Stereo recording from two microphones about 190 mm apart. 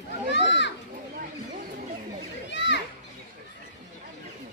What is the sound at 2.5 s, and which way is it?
Children playing, 70° left (ahead or behind).